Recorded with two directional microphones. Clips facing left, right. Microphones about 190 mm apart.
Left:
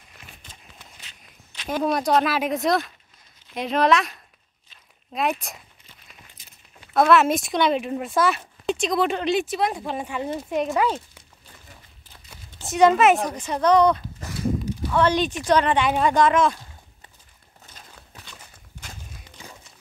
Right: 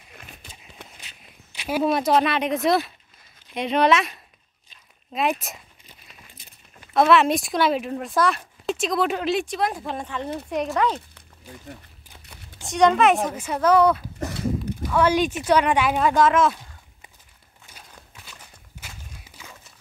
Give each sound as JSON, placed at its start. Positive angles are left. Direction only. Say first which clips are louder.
{"t": 0.8, "sound": "walk", "louder": "right 10 dB", "side_deg": -60}
{"t": 1.5, "sound": "speech", "louder": "right 2 dB", "side_deg": -10}
{"t": 6.9, "sound": "speech", "louder": "even", "side_deg": 0}
{"t": 12.6, "sound": "speech", "louder": "left 1 dB", "side_deg": 5}
{"t": 17.7, "sound": "a sound", "louder": "even", "side_deg": -10}
{"t": 18.2, "sound": "walk", "louder": "even", "side_deg": -5}